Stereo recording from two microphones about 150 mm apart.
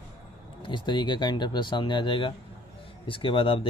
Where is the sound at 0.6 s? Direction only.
30° left (ahead or behind).